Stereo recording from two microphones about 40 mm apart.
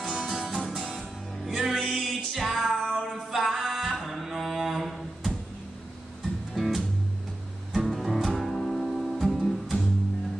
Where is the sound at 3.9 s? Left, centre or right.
Centre.